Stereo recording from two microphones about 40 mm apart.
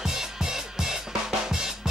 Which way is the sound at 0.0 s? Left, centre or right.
Centre.